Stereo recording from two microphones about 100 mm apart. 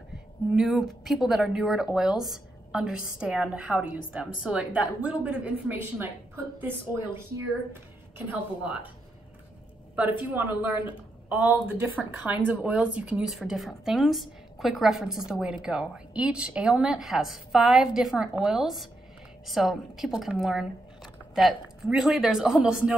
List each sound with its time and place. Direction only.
0.6 s speech: centre (ahead or behind); by 7.0 s 20° right (ahead or behind)
8.3 s speech: 15° right (ahead or behind)
9.9 s a woman's voice: 15° right (ahead or behind)